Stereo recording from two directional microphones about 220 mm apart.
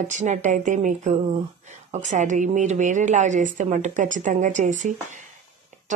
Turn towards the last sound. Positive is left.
turn(degrees=-35)  # may be behind; listen again after turning